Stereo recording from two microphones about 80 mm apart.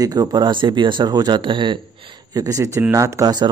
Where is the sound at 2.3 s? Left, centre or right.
Right.